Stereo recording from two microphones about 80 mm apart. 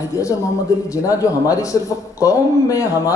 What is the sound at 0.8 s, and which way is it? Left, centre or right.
Speech, left.